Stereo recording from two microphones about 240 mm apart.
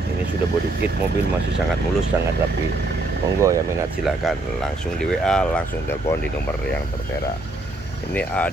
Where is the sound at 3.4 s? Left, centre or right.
Centre.